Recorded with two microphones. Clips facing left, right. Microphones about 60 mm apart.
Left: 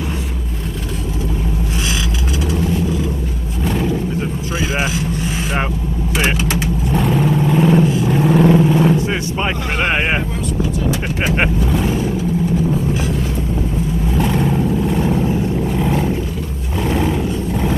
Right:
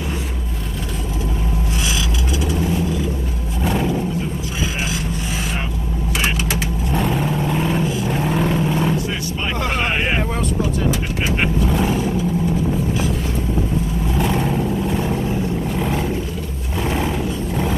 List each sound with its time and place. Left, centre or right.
6.4 s vehicle: centre
14.1 s vehicle: centre
15.7 s a sound: centre